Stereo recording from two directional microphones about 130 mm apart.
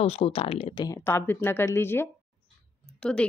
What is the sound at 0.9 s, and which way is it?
Speech, 20° left (ahead or behind).